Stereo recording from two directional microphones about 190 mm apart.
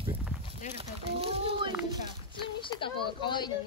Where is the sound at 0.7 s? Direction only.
30° right (ahead or behind).